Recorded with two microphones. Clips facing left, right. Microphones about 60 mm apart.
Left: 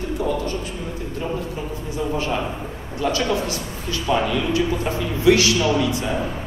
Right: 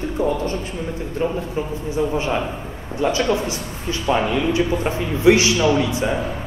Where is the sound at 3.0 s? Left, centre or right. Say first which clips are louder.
Right 2 dB; right.